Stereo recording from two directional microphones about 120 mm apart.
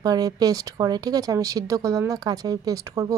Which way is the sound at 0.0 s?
30° right (ahead or behind).